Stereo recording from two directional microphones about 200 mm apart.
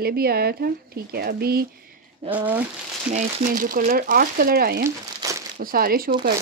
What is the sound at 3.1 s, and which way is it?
Speech, 45° right (ahead or behind).